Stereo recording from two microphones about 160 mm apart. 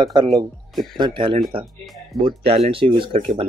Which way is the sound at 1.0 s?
35° right (ahead or behind).